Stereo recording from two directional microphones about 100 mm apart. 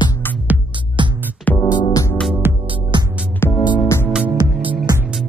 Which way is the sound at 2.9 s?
50° right (ahead or behind).